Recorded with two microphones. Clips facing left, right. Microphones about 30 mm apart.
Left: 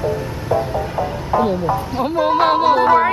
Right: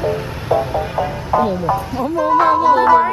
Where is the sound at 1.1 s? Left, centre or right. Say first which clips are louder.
Left 1 dB; centre.